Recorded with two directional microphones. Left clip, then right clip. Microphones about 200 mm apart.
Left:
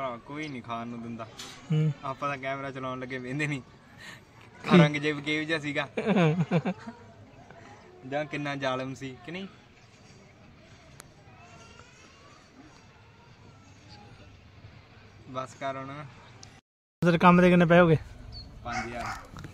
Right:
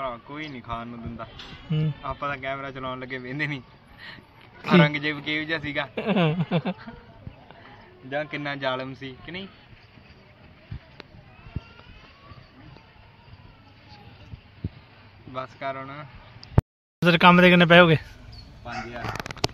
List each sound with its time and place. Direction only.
0.0 s a man's voice: 20° left (ahead or behind)
1.7 s speech: 5° left (ahead or behind)
2.0 s a man's voice: 20° left (ahead or behind)
4.6 s a man's voice: 10° left (ahead or behind)
5.9 s a sound: 5° left (ahead or behind)
8.1 s a man's voice: 15° left (ahead or behind)
15.3 s a man's voice: 20° left (ahead or behind)
17.0 s speech: centre (ahead or behind)